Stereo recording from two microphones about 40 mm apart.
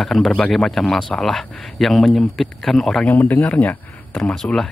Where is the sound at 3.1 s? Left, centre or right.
Left.